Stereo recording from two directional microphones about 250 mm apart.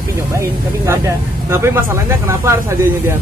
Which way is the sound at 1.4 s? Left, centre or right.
Centre.